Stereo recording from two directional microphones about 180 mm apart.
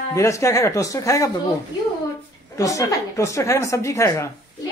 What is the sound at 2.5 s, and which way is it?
A man's voice, 20° left (ahead or behind).